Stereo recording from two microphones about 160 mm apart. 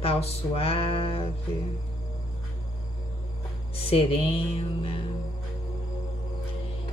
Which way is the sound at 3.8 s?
35° left (ahead or behind).